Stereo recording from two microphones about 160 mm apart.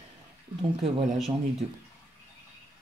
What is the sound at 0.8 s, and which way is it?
Speech, centre (ahead or behind).